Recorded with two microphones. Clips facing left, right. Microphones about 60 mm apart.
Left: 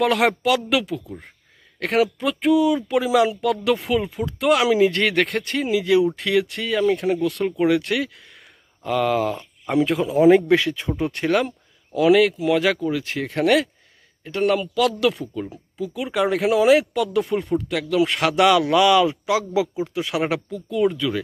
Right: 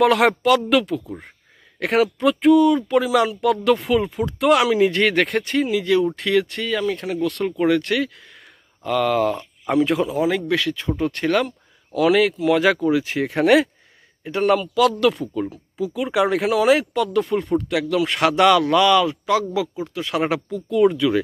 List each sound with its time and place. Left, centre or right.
0.0 s speech: centre
10.1 s a man's voice: left; by 21.2 s centre